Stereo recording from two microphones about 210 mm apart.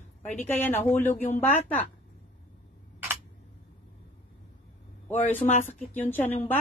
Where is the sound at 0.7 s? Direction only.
10° left (ahead or behind).